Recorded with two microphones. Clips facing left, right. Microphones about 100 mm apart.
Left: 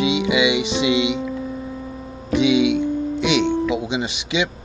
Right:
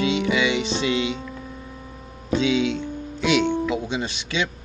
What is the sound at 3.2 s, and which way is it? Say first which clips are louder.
Speech: even; 20° left (ahead or behind).